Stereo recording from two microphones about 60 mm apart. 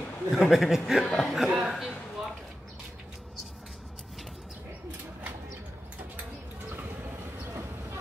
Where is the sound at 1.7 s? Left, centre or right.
Centre.